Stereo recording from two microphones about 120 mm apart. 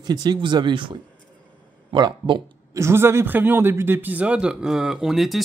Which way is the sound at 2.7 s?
25° right (ahead or behind).